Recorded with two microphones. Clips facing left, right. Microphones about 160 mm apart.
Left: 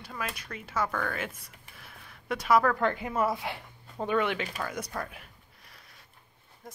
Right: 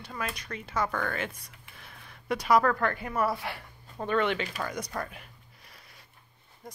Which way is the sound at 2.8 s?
20° left (ahead or behind).